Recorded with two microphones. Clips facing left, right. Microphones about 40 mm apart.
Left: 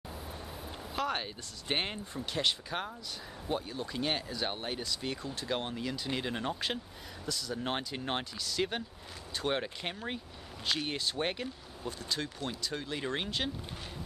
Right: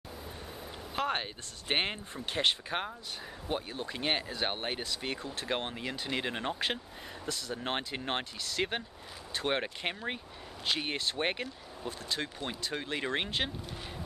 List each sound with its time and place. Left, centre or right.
0.9 s speech: right